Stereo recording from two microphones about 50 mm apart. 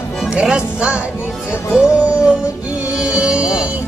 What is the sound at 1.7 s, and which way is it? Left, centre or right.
Music, centre.